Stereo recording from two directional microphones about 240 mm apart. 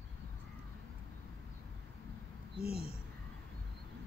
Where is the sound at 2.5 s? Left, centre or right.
Left.